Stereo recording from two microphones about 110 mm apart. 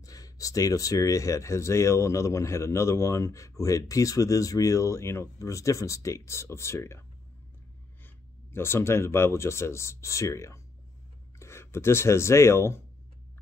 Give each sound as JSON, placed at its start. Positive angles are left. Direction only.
{"t": 0.0, "sound": "speech", "side_deg": 30}